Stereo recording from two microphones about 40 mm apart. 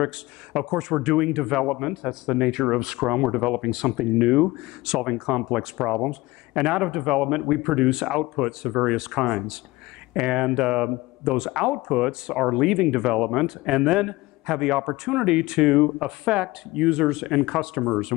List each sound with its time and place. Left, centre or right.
0.0 s speech: centre